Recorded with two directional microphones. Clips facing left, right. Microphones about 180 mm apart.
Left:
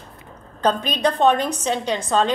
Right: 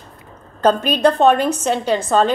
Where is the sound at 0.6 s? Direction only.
5° right (ahead or behind).